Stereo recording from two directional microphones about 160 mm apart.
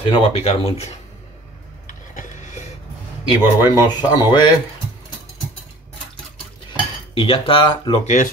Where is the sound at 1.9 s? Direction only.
55° left (ahead or behind).